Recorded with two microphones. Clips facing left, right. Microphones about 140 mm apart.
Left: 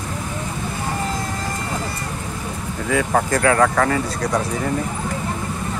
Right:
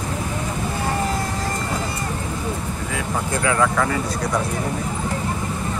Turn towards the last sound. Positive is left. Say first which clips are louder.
# left 3 dB
turn(degrees=45)  # may be behind; listen again after turning